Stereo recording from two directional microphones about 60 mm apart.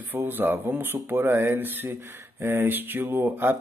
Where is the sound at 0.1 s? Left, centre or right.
Right.